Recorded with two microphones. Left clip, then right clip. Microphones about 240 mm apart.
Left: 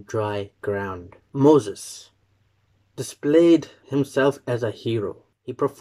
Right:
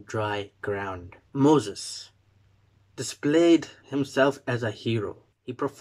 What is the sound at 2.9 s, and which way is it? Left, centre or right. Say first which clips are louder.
Speech: left 5 dB; right.